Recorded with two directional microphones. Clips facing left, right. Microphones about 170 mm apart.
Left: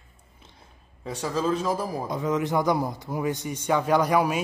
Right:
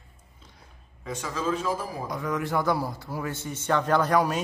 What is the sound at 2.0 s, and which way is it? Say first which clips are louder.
A man's voice: left 3 dB; 20° left (ahead or behind).